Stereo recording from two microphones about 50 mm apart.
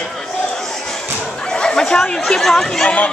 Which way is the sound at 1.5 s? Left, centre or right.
Centre.